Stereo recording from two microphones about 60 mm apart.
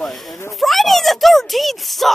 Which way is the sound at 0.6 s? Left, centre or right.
Centre.